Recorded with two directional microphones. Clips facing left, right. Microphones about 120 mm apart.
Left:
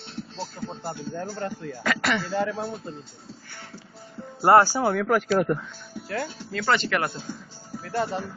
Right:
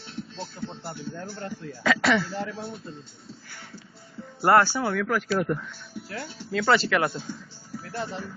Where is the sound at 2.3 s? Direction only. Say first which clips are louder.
Left 6 dB; 90° left.